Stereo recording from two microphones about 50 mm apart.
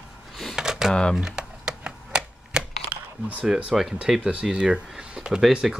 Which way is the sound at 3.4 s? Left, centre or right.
Centre.